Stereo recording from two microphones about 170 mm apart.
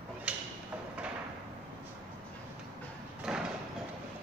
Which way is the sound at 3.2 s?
5° right (ahead or behind).